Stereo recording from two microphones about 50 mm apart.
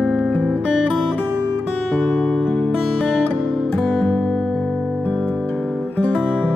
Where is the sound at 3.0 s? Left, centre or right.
Left.